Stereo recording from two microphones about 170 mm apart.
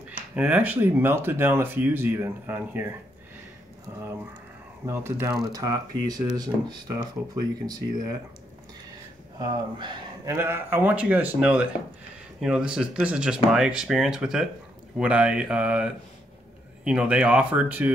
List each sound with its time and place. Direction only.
0.4 s speech: 10° right (ahead or behind)
4.8 s speech: 15° right (ahead or behind)
9.4 s speech: 25° right (ahead or behind)
10.2 s speech: 15° right (ahead or behind)